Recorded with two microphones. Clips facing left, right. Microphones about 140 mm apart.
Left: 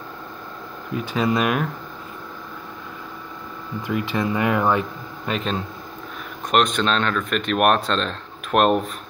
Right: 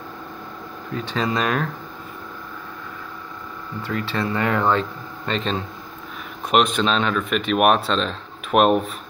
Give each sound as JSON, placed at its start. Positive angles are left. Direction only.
{"t": 0.9, "sound": "speech", "side_deg": 10}
{"t": 3.8, "sound": "speech", "side_deg": 15}